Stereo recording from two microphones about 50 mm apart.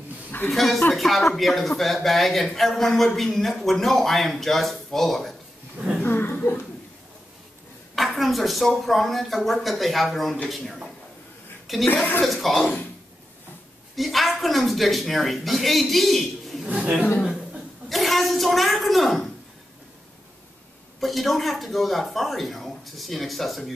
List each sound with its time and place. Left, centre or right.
0.5 s a man's voice: centre
6.0 s a sound: left
7.9 s speech: centre
11.6 s chuckle: centre
12.2 s speech: centre
13.9 s speech: centre
16.6 s speech: right
17.8 s a sound: centre
21.0 s speech: centre